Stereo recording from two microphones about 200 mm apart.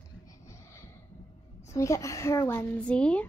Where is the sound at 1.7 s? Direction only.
15° left (ahead or behind).